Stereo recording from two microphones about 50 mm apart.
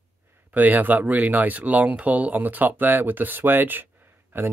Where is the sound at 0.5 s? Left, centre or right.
Right.